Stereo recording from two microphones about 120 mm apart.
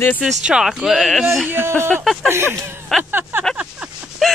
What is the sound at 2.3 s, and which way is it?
Speech, 20° right (ahead or behind).